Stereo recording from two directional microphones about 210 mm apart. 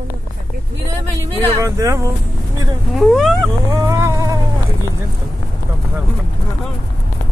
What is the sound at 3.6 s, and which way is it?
Dog, 15° right (ahead or behind).